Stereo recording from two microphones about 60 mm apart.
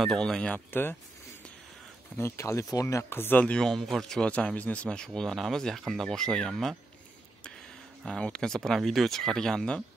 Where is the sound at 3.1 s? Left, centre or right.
Left.